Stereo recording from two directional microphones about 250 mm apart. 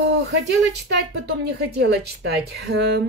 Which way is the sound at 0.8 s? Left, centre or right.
Right.